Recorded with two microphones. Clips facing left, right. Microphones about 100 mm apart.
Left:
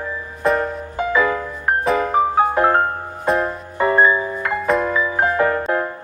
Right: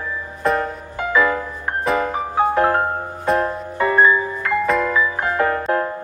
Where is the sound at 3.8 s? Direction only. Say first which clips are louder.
Even; 20° left (ahead or behind).